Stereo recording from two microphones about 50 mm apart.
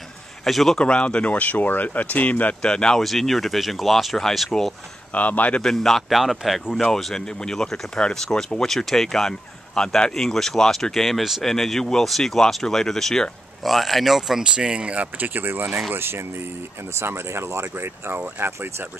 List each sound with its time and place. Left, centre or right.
0.5 s speech: centre
0.7 s speech: left
2.6 s speech: centre
3.0 s speech: centre
5.1 s speech: left
5.6 s speech: centre
13.7 s speech: centre
14.4 s speech: centre
15.0 s speech: right
15.9 s speech: right